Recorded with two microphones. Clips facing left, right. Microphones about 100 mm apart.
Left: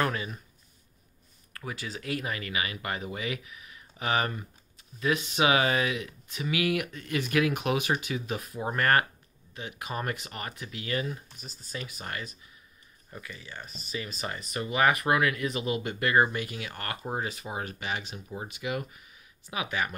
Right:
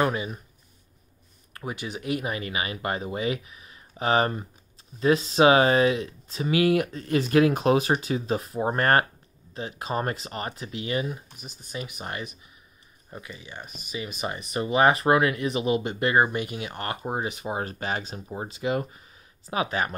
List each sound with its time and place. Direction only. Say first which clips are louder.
0.0 s speech: right 4 dB; 20° right (ahead or behind)
1.5 s speech: right 4 dB; 25° right (ahead or behind)
17.6 s speech: right 4 dB; 35° right (ahead or behind)